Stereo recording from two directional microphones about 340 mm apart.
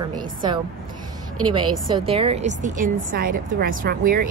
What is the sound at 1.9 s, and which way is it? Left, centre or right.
A woman's voice, centre.